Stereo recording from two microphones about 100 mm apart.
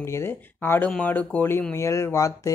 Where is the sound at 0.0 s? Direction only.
25° left (ahead or behind).